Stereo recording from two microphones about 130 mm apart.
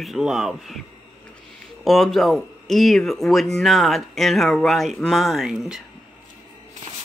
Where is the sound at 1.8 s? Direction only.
Centre (ahead or behind).